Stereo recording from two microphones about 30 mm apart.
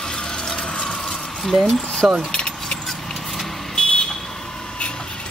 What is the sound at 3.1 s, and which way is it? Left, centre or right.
Vehicle, centre.